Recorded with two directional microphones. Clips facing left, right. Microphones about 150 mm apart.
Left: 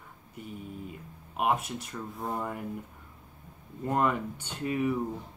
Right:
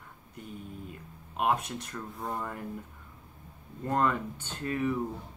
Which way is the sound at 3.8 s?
10° left (ahead or behind).